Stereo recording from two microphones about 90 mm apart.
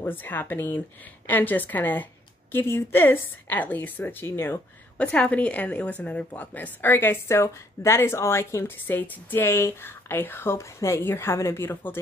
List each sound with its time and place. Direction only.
0.0 s speech: 20° left (ahead or behind)